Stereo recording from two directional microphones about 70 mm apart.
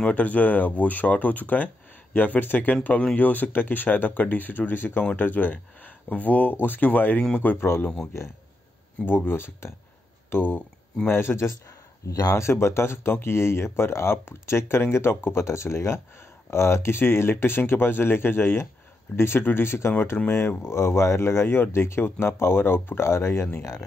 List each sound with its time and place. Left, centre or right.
0.0 s speech: left
7.6 s speech: left
9.0 s speech: left
12.1 s speech: left
12.4 s speech: left